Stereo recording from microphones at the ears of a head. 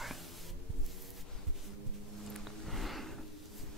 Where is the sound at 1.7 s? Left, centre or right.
Right.